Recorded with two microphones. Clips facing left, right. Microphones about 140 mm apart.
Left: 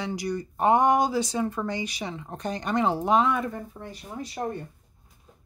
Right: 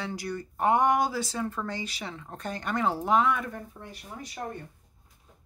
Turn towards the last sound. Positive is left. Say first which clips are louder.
# left 5 dB
turn(degrees=25)  # may be behind; listen again after turning